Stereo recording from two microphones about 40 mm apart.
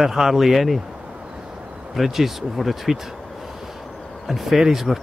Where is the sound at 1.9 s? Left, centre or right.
Centre.